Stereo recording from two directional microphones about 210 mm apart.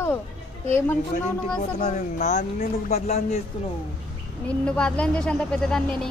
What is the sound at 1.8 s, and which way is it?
Speech, 35° left (ahead or behind).